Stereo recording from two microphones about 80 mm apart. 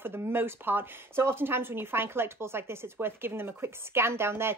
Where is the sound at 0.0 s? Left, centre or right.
Right.